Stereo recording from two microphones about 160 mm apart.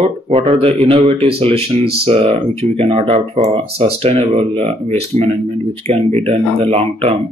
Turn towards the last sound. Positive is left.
turn(degrees=-35)  # may be behind; listen again after turning